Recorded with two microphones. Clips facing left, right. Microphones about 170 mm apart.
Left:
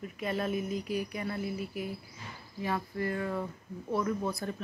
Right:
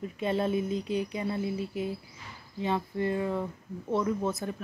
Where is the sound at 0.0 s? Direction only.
30° right (ahead or behind).